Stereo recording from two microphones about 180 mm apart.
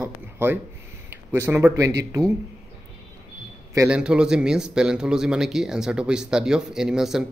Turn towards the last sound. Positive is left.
turn(degrees=-5)  # may be behind; listen again after turning